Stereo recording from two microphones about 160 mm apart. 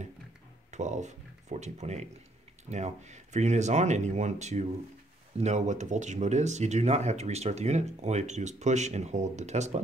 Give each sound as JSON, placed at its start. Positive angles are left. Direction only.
{"t": 0.7, "sound": "speech", "side_deg": -50}